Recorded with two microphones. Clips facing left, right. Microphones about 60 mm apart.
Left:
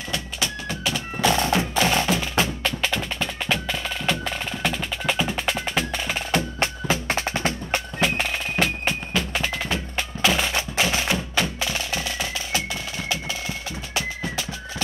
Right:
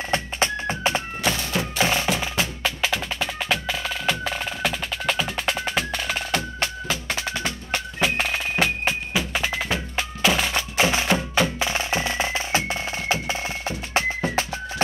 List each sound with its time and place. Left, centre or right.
0.1 s music: right
1.3 s music: left
1.8 s music: right
2.6 s percussion: centre
5.9 s percussion: centre; by 7.8 s left
8.0 s music: centre
10.5 s music: right